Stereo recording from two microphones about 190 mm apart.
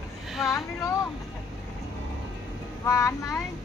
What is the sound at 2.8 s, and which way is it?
Speech, 15° left (ahead or behind).